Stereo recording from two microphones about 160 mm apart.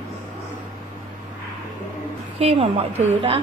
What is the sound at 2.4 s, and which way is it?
Speech, 40° right (ahead or behind).